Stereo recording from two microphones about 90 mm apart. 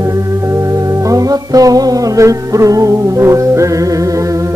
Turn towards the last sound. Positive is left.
turn(degrees=-35)  # may be behind; listen again after turning